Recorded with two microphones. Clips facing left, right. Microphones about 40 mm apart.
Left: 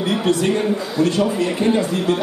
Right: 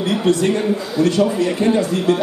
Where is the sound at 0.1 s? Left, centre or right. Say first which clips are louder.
Right 2 dB; centre.